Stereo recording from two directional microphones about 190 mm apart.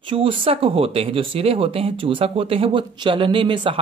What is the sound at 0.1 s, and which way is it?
Speech, 25° right (ahead or behind).